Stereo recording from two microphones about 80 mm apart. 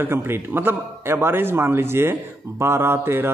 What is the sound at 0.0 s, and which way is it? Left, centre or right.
Speech, right.